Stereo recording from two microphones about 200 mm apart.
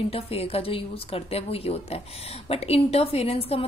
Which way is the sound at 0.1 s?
30° left (ahead or behind).